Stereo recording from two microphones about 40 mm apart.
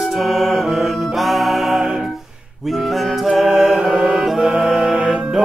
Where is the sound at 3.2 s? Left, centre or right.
Centre.